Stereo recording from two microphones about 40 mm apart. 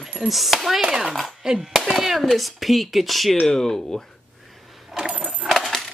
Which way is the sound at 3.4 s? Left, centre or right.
Centre.